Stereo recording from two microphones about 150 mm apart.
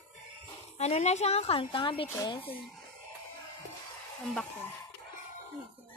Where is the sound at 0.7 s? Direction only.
45° left (ahead or behind); by 2.5 s 30° left (ahead or behind).